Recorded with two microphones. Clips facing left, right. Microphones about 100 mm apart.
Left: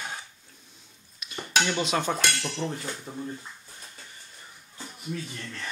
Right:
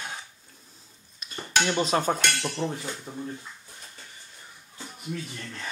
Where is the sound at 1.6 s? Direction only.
35° right (ahead or behind).